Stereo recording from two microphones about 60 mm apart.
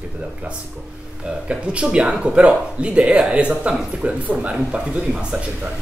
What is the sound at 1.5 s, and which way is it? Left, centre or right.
Speech, centre.